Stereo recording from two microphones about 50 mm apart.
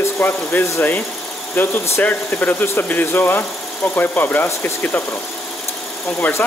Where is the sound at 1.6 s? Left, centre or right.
Left.